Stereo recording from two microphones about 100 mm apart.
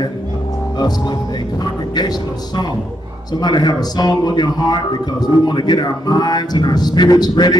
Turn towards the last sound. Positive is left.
turn(degrees=40)  # may be behind; listen again after turning